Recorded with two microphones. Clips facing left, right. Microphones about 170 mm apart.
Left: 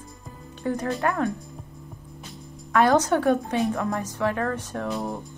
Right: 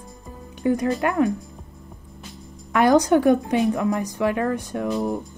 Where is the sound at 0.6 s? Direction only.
15° right (ahead or behind).